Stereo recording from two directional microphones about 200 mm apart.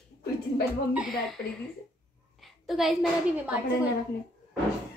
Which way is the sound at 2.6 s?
Centre (ahead or behind).